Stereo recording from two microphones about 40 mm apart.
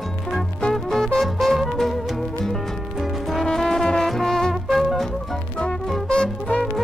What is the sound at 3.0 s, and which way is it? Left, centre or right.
Music, centre.